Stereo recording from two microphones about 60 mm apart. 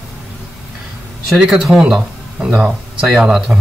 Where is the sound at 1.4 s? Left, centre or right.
Centre.